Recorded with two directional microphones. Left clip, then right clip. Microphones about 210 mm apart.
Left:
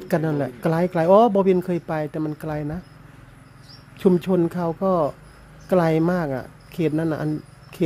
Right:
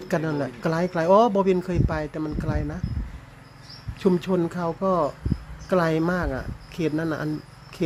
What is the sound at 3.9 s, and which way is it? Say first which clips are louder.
Speech: left 3 dB; 15° left (ahead or behind).